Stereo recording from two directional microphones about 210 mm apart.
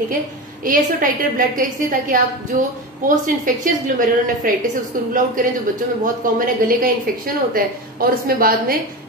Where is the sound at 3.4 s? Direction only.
40° right (ahead or behind).